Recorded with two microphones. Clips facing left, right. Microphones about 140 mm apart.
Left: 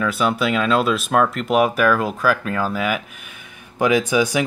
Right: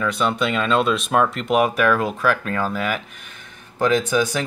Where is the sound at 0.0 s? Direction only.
5° left (ahead or behind).